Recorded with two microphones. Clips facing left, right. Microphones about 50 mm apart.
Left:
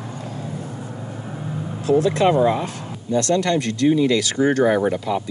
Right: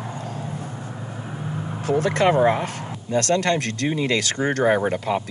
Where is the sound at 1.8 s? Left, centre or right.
Right.